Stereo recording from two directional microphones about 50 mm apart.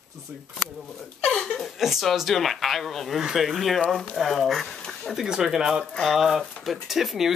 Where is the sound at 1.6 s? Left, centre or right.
Centre.